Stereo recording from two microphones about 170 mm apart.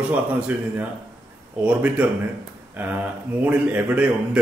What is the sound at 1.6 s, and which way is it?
Speech, 10° right (ahead or behind).